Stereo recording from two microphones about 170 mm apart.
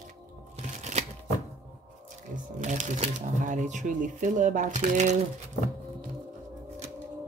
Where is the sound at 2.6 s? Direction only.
45° right (ahead or behind).